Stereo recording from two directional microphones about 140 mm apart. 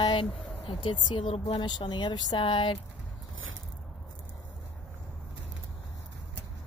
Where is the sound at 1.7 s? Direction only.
30° left (ahead or behind).